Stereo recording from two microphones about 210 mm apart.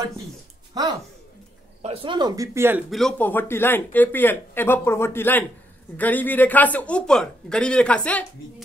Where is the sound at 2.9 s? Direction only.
Centre (ahead or behind).